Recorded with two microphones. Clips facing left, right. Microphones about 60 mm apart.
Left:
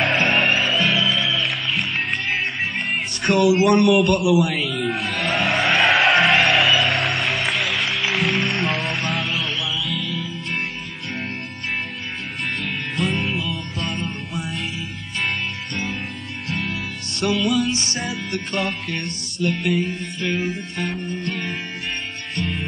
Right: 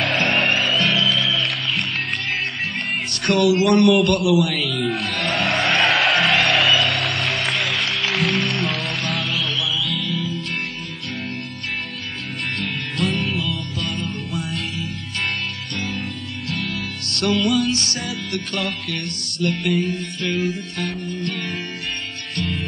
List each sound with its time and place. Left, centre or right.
0.0 s music: centre
3.1 s music: centre
12.5 s music: centre
13.8 s music: left
14.3 s music: centre
17.2 s music: centre
17.7 s music: left
18.7 s music: centre